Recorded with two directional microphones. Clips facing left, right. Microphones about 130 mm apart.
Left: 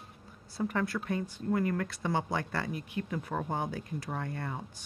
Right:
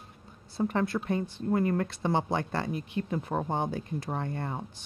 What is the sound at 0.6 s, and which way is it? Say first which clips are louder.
Speech: right 4 dB; 25° right (ahead or behind).